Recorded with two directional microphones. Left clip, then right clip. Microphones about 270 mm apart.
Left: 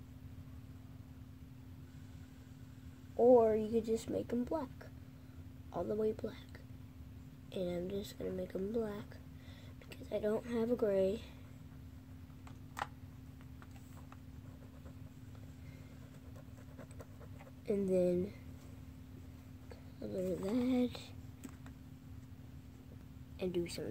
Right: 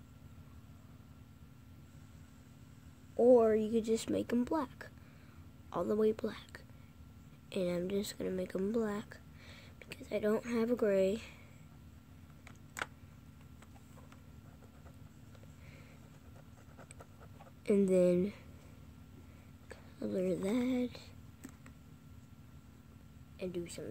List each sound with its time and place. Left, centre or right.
3.2 s a child's voice: centre
17.6 s a child's voice: right
19.7 s a sound: right
20.5 s music: centre
23.4 s music: centre